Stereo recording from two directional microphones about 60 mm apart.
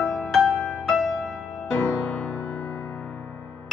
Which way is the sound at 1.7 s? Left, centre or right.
Left.